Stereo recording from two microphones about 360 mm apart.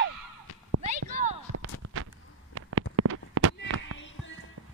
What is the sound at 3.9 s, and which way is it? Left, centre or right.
Music, left.